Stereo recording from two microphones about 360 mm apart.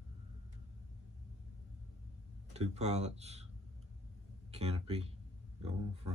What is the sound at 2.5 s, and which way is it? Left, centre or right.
Speech, centre.